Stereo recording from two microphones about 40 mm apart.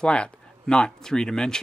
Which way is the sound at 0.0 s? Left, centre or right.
Left.